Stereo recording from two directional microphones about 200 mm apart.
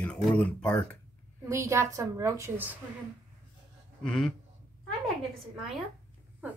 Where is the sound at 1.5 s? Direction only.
15° right (ahead or behind).